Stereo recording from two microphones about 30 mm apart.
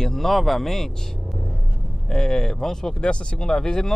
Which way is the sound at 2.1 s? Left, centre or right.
Centre.